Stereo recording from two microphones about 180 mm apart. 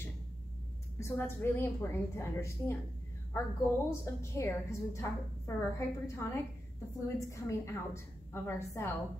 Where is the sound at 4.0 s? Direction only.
15° left (ahead or behind).